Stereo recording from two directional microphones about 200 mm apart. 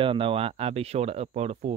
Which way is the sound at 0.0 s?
25° right (ahead or behind).